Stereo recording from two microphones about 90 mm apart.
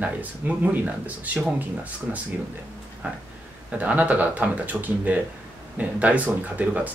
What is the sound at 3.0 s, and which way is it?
Speech, 15° right (ahead or behind).